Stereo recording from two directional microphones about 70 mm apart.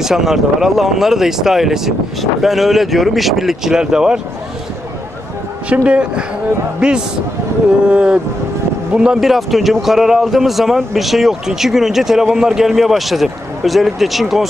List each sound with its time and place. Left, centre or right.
0.0 s speech: centre
5.7 s speech: centre
7.9 s speech: centre